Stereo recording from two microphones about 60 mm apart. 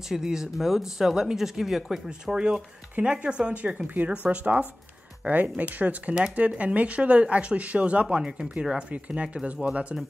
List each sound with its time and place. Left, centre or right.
0.1 s speech: centre